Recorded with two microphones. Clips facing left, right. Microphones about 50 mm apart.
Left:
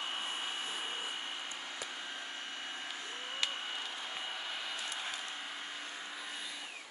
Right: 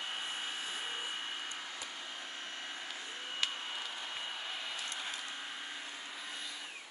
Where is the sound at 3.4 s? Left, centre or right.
Centre.